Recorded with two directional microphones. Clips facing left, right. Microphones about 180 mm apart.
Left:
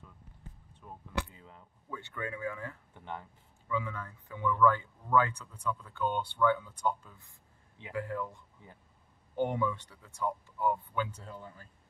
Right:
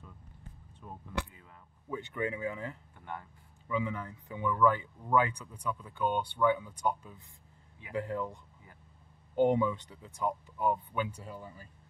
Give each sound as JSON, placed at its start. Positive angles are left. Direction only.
{"t": 1.3, "sound": "a sound", "side_deg": 25}
{"t": 1.9, "sound": "speech", "side_deg": -20}
{"t": 2.9, "sound": "speech", "side_deg": 20}
{"t": 3.6, "sound": "a man's voice", "side_deg": -15}
{"t": 9.3, "sound": "a man's voice", "side_deg": -20}